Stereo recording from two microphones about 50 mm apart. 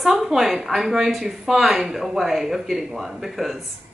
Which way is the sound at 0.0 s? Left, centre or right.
Centre.